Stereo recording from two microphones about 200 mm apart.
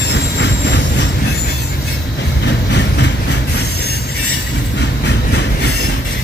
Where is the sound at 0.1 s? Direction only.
60° left (ahead or behind).